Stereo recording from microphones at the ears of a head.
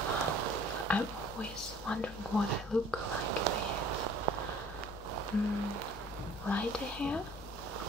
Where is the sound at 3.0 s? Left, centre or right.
Right.